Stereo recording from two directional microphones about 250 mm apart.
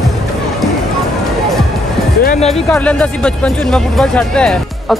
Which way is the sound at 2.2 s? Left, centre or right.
Left.